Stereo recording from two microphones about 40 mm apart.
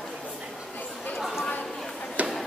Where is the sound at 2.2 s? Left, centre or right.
Right.